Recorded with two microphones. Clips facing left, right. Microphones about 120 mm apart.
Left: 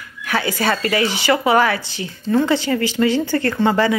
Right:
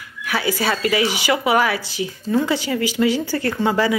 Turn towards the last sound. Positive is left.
turn(degrees=-5)  # may be behind; listen again after turning